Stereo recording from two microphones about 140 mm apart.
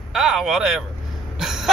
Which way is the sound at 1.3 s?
5° right (ahead or behind).